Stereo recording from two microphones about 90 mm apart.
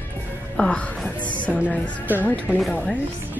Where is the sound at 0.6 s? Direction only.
15° left (ahead or behind).